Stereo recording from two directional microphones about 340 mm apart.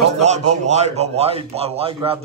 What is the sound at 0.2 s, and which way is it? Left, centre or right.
Speech, centre.